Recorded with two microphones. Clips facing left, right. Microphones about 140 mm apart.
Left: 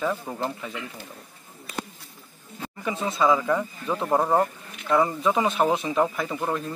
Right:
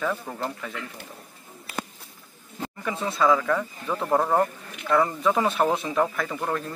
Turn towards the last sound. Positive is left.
turn(degrees=10)  # may be behind; listen again after turning